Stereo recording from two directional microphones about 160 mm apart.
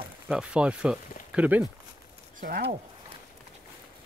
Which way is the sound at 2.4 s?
70° right (ahead or behind).